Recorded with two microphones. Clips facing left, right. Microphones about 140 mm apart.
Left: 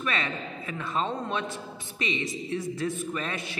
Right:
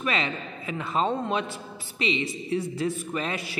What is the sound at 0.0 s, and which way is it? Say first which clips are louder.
A man's voice: right 3 dB; 25° right (ahead or behind).